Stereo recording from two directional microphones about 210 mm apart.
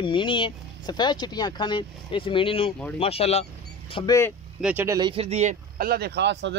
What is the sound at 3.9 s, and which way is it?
Speech, 20° left (ahead or behind).